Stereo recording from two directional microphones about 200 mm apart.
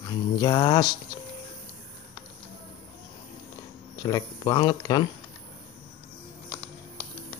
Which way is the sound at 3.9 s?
20° left (ahead or behind).